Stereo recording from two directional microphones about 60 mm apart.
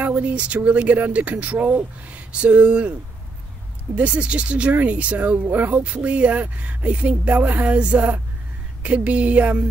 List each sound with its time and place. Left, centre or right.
0.0 s speech: right
3.9 s speech: right